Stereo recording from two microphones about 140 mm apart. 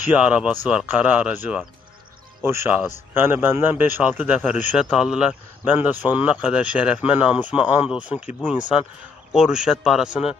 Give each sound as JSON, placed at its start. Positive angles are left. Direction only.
{"t": 0.1, "sound": "a man's voice", "side_deg": -10}
{"t": 9.3, "sound": "a man's voice", "side_deg": -5}